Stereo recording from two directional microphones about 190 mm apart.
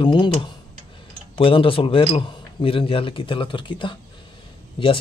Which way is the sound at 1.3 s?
30° left (ahead or behind).